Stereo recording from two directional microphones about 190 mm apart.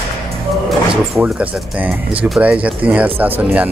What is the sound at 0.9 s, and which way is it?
Speech, 5° right (ahead or behind).